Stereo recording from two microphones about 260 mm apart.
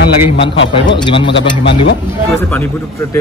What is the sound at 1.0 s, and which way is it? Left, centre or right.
Speech, centre.